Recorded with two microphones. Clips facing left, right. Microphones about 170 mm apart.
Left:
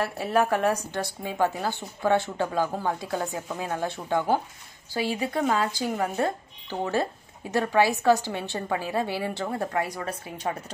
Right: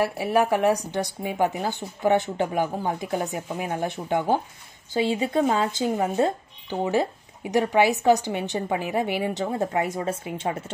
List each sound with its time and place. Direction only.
0.0 s a woman's voice: 15° right (ahead or behind)